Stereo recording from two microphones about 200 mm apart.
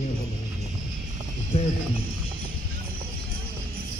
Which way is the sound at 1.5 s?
30° left (ahead or behind).